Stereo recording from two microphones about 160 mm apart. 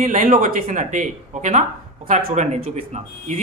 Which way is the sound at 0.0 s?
50° right (ahead or behind).